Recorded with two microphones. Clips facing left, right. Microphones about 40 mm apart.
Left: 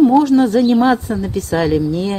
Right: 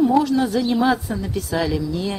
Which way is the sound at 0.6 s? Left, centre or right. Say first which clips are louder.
Left 6 dB; centre.